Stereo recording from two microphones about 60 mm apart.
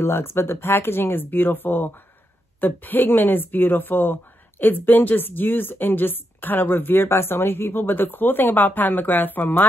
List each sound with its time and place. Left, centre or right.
0.0 s a woman's voice: left